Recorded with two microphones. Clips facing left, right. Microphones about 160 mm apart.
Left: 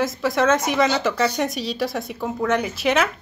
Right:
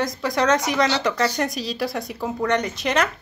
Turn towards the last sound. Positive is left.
turn(degrees=5)  # may be behind; listen again after turning